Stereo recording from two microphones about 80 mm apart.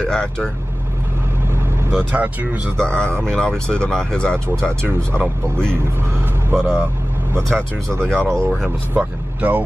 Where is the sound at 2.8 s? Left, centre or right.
Centre.